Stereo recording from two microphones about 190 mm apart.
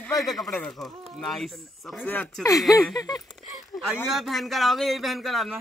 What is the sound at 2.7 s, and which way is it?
Speech, 20° left (ahead or behind).